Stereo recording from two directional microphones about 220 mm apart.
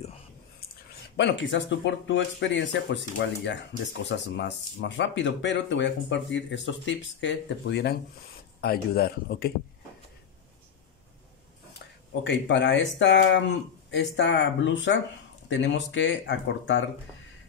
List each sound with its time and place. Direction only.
1.1 s a man's voice: 55° left (ahead or behind)
12.2 s speech: 55° left (ahead or behind)